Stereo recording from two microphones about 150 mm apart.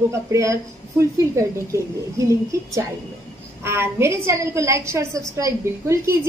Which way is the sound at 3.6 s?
15° right (ahead or behind).